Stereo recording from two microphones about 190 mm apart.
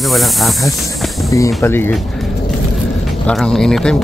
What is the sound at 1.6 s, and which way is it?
Speech, 10° left (ahead or behind).